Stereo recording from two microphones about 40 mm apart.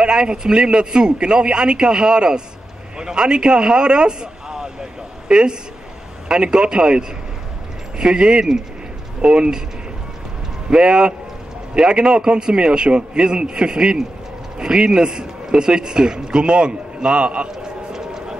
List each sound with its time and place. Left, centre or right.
0.0 s a man's voice: right
9.2 s a man's voice: right
10.7 s a man's voice: right
17.6 s a sound: centre